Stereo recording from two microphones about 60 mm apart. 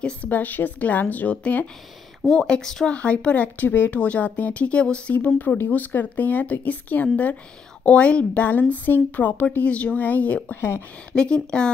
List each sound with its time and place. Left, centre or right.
0.0 s speech: left
2.2 s speech: centre
5.1 s speech: left
11.1 s speech: centre